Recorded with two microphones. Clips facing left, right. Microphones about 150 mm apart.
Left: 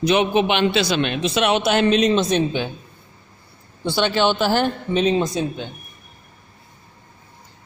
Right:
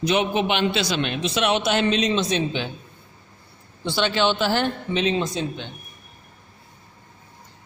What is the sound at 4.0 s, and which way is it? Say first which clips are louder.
A man's voice: left 3 dB; 45° left (ahead or behind).